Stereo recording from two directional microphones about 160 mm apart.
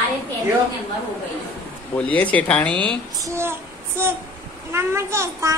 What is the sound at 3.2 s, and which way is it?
Speech, 15° right (ahead or behind).